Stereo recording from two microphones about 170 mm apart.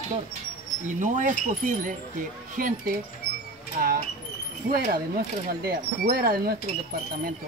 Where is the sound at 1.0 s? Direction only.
50° right (ahead or behind).